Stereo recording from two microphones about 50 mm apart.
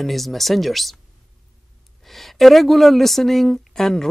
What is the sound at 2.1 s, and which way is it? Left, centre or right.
Speech, centre.